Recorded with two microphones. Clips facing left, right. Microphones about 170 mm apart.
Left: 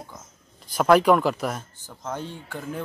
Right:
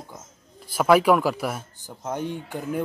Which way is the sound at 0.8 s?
5° right (ahead or behind).